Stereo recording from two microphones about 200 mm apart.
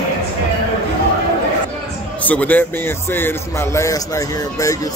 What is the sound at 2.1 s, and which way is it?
Speech, 5° left (ahead or behind).